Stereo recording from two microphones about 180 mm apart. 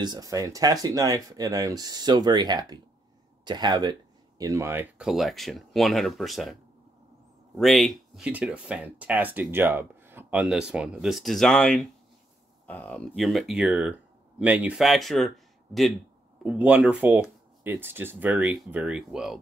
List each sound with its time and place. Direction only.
0.0 s speech: 20° right (ahead or behind); by 6.5 s centre (ahead or behind)
7.5 s speech: centre (ahead or behind)